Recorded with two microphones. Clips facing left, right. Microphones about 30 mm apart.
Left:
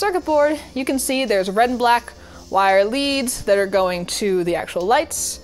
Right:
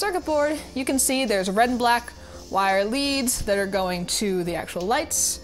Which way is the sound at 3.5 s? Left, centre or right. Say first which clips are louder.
Left 8 dB; left.